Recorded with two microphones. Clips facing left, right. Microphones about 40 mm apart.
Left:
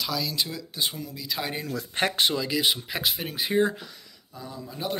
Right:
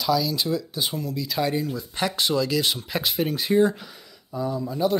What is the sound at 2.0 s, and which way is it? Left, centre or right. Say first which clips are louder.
Speech: left 1 dB; left.